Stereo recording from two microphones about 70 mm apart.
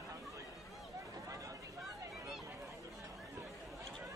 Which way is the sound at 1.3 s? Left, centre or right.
Right.